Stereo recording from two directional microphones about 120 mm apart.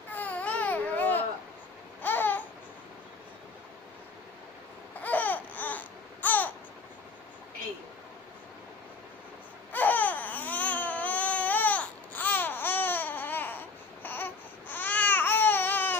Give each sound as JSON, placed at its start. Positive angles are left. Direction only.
{"t": 0.1, "sound": "baby cry", "side_deg": 10}
{"t": 2.0, "sound": "babbling", "side_deg": 15}
{"t": 5.0, "sound": "babbling", "side_deg": 15}
{"t": 9.7, "sound": "baby cry", "side_deg": 15}